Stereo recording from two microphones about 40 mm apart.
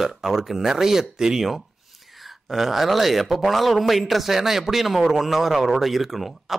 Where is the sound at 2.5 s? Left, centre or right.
Centre.